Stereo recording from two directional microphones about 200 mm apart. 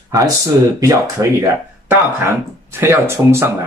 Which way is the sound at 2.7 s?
10° right (ahead or behind).